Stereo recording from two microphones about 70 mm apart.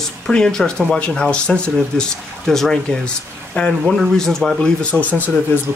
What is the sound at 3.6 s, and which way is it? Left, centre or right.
Speech, left.